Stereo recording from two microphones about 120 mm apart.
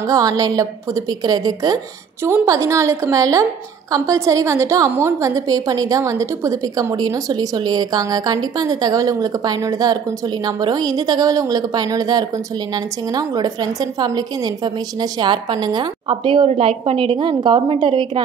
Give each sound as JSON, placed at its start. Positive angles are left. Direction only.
{"t": 0.0, "sound": "a woman's voice", "side_deg": -30}